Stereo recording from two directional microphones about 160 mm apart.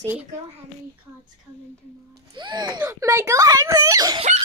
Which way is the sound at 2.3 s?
30° right (ahead or behind).